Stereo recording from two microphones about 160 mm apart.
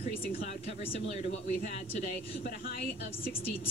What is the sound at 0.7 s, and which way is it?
Speech, 40° left (ahead or behind).